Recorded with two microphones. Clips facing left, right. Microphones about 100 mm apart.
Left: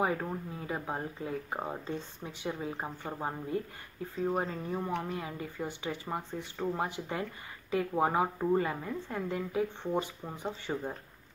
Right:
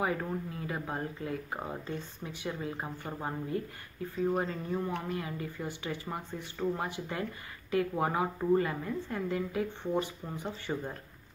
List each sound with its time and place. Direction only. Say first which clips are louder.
0.0 s speech: left 1 dB; 20° left (ahead or behind)